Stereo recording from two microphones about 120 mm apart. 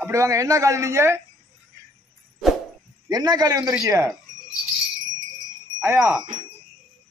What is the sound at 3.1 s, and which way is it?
Speech, 35° right (ahead or behind).